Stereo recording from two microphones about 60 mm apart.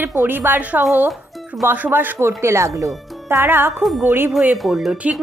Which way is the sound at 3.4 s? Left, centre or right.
Right.